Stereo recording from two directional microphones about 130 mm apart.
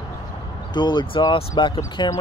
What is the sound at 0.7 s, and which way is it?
Speech, 35° left (ahead or behind).